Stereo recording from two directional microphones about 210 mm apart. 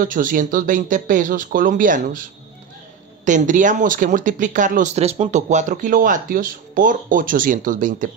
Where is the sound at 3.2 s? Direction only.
35° right (ahead or behind).